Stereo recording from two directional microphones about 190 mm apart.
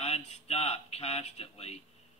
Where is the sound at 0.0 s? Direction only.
35° left (ahead or behind).